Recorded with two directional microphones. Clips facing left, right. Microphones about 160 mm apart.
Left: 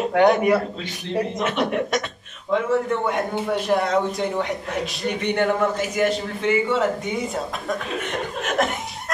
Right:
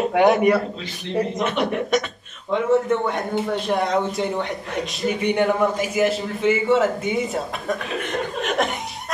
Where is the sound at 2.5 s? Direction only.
Centre (ahead or behind).